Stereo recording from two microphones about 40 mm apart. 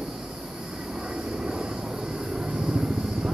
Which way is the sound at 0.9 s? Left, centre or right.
Right.